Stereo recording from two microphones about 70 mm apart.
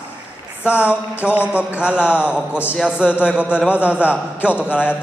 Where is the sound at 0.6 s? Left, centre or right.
Centre.